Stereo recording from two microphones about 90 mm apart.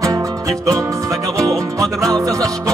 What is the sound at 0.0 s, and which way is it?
Music, 40° right (ahead or behind).